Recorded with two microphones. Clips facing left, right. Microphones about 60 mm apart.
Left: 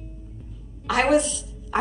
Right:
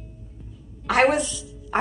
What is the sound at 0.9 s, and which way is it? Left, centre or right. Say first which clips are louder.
Speech: right 1 dB; right.